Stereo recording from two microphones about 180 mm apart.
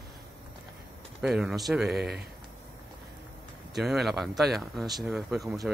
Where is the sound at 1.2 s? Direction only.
5° right (ahead or behind).